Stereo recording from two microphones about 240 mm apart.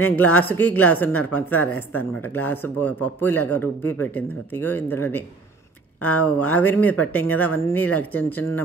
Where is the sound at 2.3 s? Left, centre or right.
Centre.